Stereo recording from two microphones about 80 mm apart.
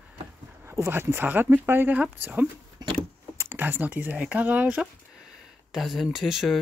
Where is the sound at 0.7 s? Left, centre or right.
Right.